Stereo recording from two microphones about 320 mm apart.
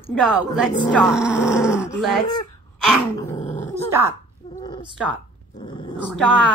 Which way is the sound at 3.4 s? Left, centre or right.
Left.